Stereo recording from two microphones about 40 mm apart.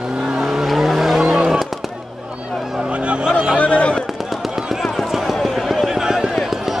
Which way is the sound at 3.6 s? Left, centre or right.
Left.